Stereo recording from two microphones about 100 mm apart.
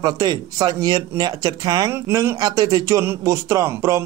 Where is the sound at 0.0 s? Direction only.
40° right (ahead or behind).